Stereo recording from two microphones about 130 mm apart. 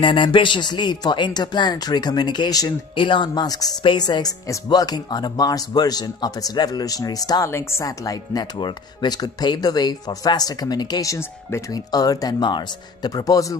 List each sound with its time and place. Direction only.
0.0 s speech: 40° left (ahead or behind)